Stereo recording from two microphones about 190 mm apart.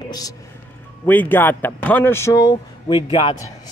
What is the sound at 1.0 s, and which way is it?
A man's voice, 10° left (ahead or behind).